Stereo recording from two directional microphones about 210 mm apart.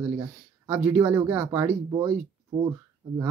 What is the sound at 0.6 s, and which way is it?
Speech, 5° right (ahead or behind).